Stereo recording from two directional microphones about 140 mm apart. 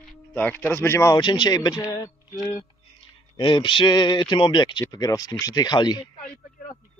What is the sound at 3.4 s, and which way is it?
Speech, 35° left (ahead or behind).